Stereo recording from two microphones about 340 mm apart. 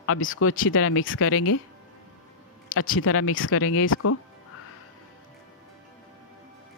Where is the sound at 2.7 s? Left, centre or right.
Left.